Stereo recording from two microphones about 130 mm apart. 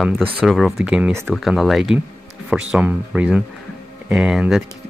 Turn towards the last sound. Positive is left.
turn(degrees=-5)  # may be behind; listen again after turning